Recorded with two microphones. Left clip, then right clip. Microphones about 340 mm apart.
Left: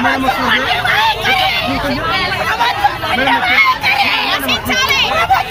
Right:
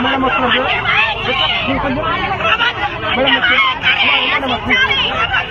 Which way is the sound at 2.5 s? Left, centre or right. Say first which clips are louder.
Right 2 dB; centre.